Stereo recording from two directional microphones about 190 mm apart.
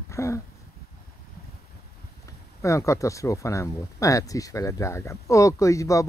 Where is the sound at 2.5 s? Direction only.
15° left (ahead or behind).